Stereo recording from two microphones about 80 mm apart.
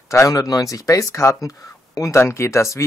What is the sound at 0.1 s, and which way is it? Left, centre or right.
Speech, left.